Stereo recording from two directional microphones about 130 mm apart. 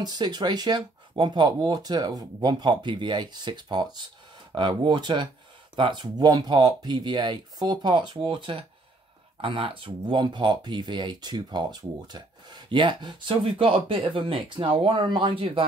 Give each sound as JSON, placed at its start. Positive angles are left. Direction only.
{"t": 0.0, "sound": "speech", "side_deg": -30}